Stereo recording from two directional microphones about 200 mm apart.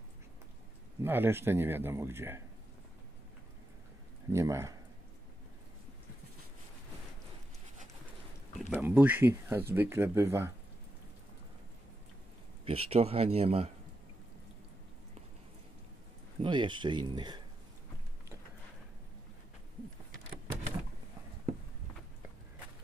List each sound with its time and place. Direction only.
1.0 s speech: 10° right (ahead or behind)
4.3 s speech: 15° right (ahead or behind)
8.5 s speech: 5° right (ahead or behind)
12.6 s speech: 30° right (ahead or behind)
16.4 s speech: 25° right (ahead or behind)